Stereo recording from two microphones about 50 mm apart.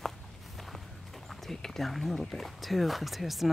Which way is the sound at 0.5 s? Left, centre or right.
Centre.